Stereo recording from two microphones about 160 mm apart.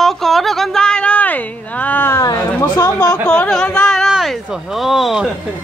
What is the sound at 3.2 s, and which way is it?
Music, 5° left (ahead or behind).